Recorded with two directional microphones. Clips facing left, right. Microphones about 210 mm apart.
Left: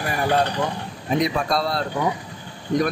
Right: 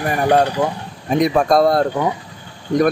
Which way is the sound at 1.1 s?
50° right (ahead or behind).